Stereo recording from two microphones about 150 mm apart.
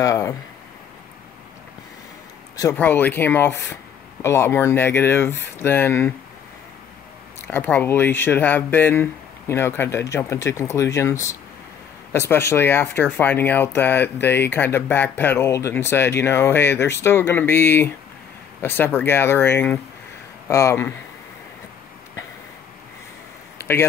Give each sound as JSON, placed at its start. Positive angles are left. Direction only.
{"t": 0.0, "sound": "speech", "side_deg": 20}
{"t": 2.7, "sound": "speech", "side_deg": 10}
{"t": 7.4, "sound": "speech", "side_deg": 10}
{"t": 23.6, "sound": "a sound", "side_deg": 15}